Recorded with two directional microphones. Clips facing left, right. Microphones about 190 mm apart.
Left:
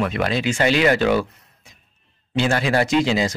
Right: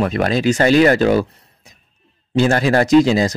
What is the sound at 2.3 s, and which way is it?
Speech, 40° right (ahead or behind).